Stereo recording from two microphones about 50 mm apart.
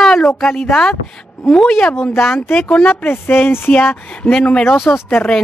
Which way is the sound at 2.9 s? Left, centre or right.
Left.